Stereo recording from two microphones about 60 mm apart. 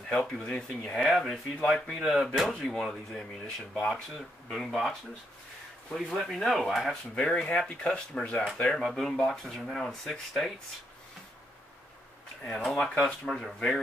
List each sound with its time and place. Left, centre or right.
0.1 s speech: centre
6.1 s speech: centre
7.2 s speech: centre
12.6 s speech: centre